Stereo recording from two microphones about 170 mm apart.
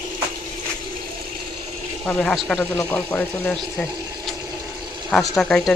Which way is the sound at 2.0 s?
10° left (ahead or behind).